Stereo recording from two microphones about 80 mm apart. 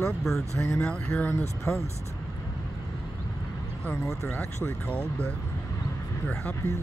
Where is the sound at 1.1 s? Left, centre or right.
Left.